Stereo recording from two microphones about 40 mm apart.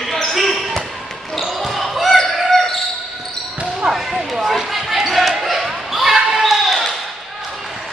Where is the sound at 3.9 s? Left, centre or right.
Centre.